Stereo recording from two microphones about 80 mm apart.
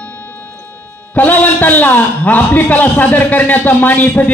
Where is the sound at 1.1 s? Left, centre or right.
Left.